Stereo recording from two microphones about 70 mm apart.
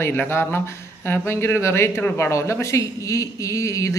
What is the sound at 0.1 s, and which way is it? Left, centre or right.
A man's voice, left.